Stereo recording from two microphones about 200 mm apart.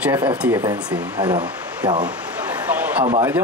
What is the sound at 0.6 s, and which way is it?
Speech, 20° right (ahead or behind).